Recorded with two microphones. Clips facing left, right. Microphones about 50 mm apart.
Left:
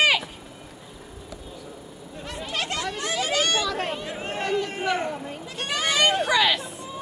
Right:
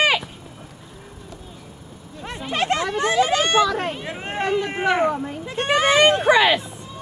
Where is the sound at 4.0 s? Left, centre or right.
Right.